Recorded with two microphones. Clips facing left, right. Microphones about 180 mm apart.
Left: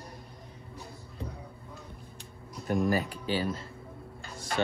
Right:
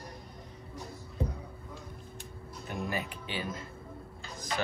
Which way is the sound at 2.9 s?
35° left (ahead or behind).